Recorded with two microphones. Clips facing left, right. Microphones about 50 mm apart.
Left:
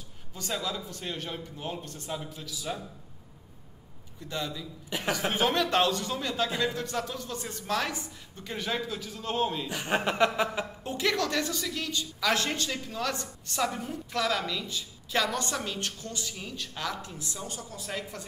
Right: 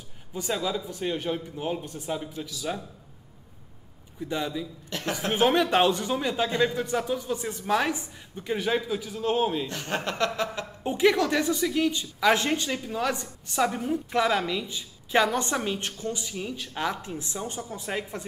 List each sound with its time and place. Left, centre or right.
0.3 s a woman's voice: centre
4.2 s speech: centre
4.8 s a woman's voice: centre
5.3 s a woman's voice: centre
9.7 s speech: centre
10.8 s speech: right